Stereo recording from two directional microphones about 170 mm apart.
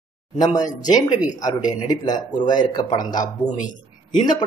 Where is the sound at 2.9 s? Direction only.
25° left (ahead or behind).